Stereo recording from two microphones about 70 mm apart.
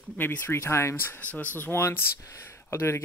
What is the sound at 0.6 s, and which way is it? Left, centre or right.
Speech, left.